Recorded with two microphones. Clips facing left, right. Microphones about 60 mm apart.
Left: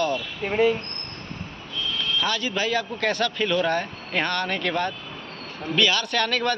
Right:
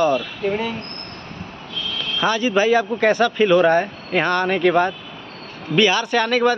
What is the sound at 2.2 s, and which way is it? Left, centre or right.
Speech, right.